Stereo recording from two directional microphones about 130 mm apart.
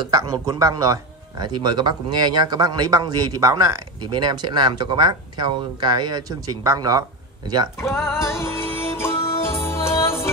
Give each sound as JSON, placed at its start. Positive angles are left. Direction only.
{"t": 0.0, "sound": "speech", "side_deg": -25}
{"t": 7.8, "sound": "music", "side_deg": 20}